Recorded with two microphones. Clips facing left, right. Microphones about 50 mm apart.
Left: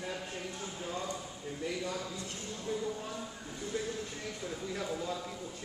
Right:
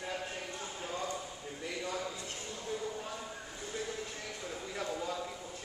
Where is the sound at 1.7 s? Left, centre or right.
Centre.